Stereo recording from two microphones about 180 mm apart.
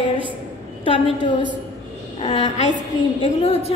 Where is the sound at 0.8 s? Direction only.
30° left (ahead or behind).